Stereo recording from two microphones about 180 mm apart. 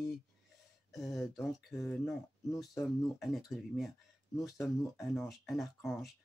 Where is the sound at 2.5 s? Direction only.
Centre (ahead or behind).